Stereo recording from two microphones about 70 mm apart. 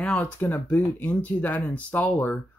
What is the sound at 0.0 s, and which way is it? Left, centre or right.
Speech, centre.